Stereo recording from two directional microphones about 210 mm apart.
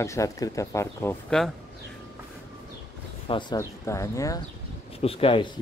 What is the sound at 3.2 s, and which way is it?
Speech, 25° left (ahead or behind).